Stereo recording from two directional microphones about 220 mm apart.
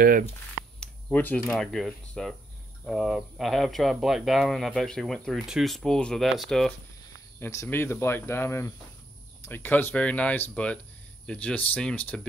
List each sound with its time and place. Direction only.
0.0 s speech: 40° right (ahead or behind)
0.7 s a sound: 5° left (ahead or behind)
1.4 s speech: centre (ahead or behind)
7.3 s cricket: 10° left (ahead or behind)